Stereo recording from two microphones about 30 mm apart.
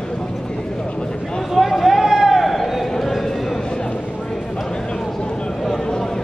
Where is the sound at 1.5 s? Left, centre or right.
Centre.